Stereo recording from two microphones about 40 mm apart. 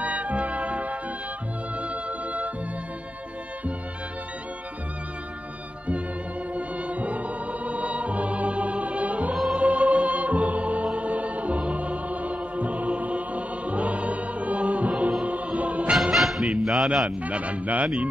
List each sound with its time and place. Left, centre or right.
0.0 s music: right
6.5 s music: right
16.0 s music: centre
17.3 s speech: right